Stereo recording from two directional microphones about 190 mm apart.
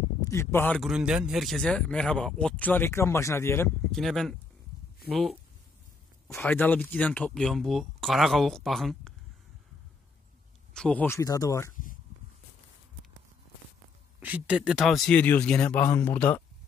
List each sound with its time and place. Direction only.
0.2 s a man's voice: 15° left (ahead or behind)
3.9 s a man's voice: centre (ahead or behind)
10.7 s speech: 5° left (ahead or behind)
11.7 s a sound: 45° left (ahead or behind)
14.2 s a man's voice: 5° right (ahead or behind); by 16.4 s 10° left (ahead or behind)